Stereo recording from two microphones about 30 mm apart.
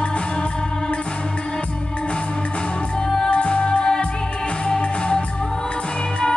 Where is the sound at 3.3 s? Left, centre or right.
Left.